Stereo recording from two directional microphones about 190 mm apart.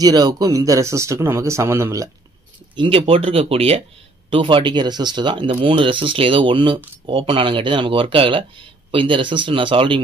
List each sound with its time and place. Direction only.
0.0 s speech: 20° right (ahead or behind)
2.7 s speech: 25° right (ahead or behind)